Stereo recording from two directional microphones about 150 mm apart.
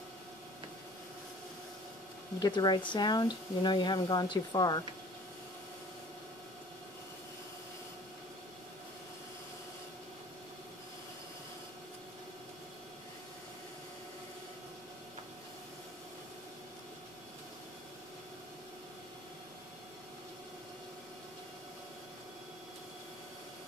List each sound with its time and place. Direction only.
2.4 s speech: 30° left (ahead or behind)